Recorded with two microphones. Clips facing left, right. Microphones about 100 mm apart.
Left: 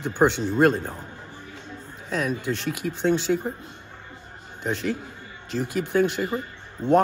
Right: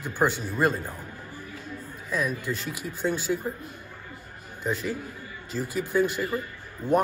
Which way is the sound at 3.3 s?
45° left (ahead or behind).